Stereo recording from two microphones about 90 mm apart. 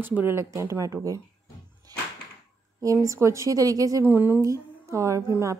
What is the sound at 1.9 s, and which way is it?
Music, 45° right (ahead or behind).